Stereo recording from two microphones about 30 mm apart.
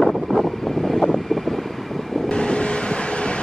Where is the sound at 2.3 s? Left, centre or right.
Left.